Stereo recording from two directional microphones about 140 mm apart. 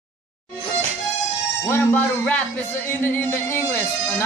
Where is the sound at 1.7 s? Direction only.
15° left (ahead or behind).